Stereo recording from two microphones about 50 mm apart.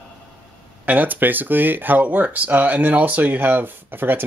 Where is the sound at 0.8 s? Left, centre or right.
Right.